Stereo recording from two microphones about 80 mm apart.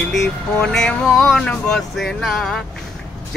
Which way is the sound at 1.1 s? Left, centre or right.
Centre.